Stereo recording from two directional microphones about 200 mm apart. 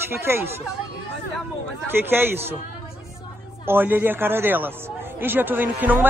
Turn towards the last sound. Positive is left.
turn(degrees=-10)  # may be behind; listen again after turning